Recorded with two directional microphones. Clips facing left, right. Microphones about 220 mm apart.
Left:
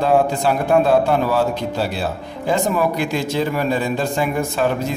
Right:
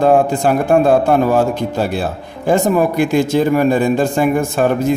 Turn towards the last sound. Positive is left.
turn(degrees=-50)  # may be behind; listen again after turning